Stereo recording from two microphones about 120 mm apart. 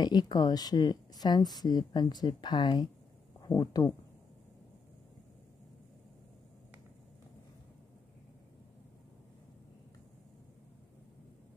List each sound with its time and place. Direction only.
0.0 s speech: 35° left (ahead or behind)